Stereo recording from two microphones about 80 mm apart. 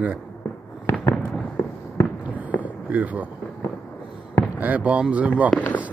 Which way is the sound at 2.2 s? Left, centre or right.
Right.